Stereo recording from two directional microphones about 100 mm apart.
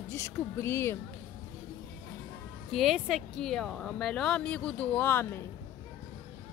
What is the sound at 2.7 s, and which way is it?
Speech, centre (ahead or behind).